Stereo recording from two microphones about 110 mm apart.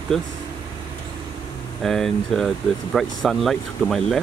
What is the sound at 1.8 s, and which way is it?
Speech, 5° left (ahead or behind).